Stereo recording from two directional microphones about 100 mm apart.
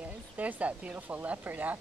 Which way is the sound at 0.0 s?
15° right (ahead or behind).